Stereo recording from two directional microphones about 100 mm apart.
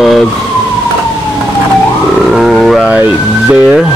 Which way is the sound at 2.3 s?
5° right (ahead or behind).